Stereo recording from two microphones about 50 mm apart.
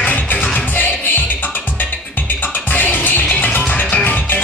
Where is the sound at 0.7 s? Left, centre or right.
Left.